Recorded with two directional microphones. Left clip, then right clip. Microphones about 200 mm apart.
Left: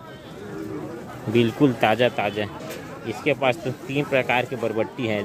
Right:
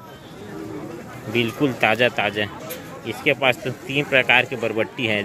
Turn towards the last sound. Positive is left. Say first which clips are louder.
# right 3 dB
turn(degrees=5)  # may be behind; listen again after turning